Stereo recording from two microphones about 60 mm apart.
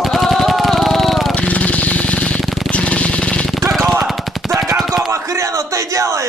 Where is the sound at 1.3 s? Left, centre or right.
Left.